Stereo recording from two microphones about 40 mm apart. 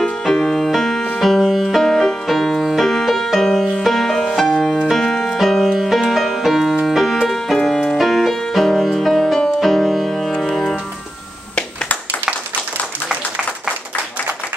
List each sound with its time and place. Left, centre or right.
0.2 s music: centre
2.6 s music: centre
2.9 s music: centre
4.9 s keyboard: centre
5.7 s music: centre
7.5 s keyboard: centre
8.0 s music: centre
13.1 s a sound: right